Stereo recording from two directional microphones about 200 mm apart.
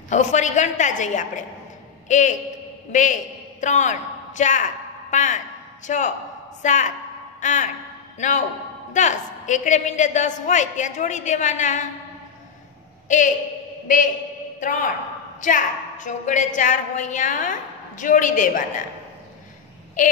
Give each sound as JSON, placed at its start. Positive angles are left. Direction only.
{"t": 0.1, "sound": "a woman's voice", "side_deg": 35}
{"t": 13.1, "sound": "a woman's voice", "side_deg": 40}
{"t": 14.6, "sound": "a woman's voice", "side_deg": 40}
{"t": 20.0, "sound": "a woman's voice", "side_deg": 40}